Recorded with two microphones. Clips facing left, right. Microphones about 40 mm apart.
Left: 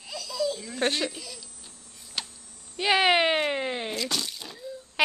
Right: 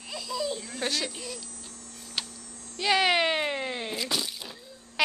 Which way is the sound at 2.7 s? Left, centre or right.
Centre.